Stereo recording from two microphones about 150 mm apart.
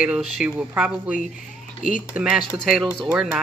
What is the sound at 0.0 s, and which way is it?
Speech, 5° right (ahead or behind).